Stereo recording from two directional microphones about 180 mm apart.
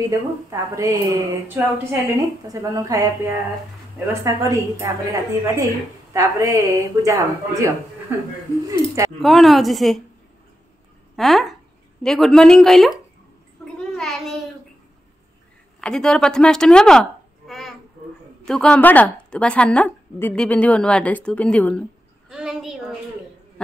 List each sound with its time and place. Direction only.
0.1 s a woman's voice: 20° right (ahead or behind)
9.2 s speech: centre (ahead or behind)
11.1 s speech: centre (ahead or behind)
13.7 s a sound: centre (ahead or behind)
15.8 s a woman's voice: 5° left (ahead or behind)
22.3 s a sound: 5° right (ahead or behind)